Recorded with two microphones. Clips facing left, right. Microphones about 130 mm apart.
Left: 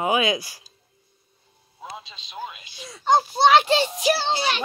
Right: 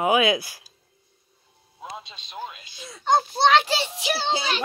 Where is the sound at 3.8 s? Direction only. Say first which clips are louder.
Left 6 dB; 40° left (ahead or behind).